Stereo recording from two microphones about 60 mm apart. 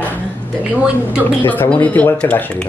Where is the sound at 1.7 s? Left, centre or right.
Left.